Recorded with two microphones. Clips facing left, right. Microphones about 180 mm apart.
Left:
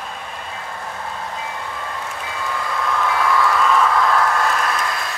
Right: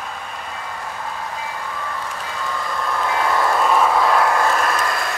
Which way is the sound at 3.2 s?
40° right (ahead or behind).